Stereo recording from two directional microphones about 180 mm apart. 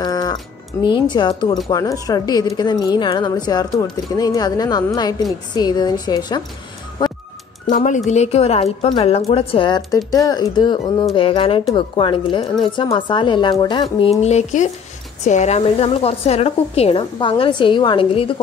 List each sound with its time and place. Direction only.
0.0 s music: 20° left (ahead or behind)
0.8 s a woman's voice: 25° left (ahead or behind)
7.0 s music: 25° left (ahead or behind)
7.7 s a woman's voice: 45° left (ahead or behind); by 14.1 s 25° left (ahead or behind)
14.2 s a woman's voice: 40° left (ahead or behind)